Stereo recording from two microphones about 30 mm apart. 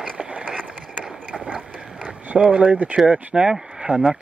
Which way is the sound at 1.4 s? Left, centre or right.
Right.